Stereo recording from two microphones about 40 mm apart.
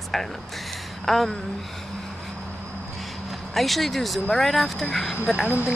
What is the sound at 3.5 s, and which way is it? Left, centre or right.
Speech, centre.